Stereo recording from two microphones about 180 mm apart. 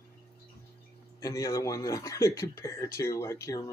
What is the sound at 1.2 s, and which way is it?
A man's voice, 20° left (ahead or behind).